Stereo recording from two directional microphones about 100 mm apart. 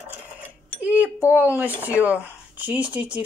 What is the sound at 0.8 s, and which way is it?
Speech, 15° right (ahead or behind).